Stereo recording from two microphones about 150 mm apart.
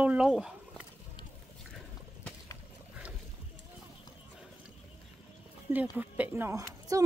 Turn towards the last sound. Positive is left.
turn(degrees=-20)  # may be behind; listen again after turning